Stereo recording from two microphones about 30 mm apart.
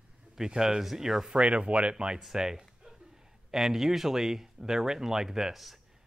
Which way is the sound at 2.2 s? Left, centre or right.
Centre.